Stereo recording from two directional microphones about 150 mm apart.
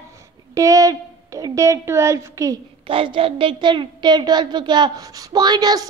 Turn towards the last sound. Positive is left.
turn(degrees=-25)  # may be behind; listen again after turning